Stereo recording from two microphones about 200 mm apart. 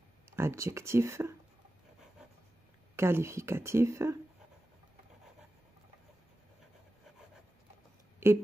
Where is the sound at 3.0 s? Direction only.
15° right (ahead or behind).